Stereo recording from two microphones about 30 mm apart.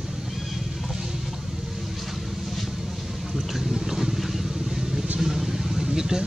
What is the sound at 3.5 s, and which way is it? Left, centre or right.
Vehicle, centre.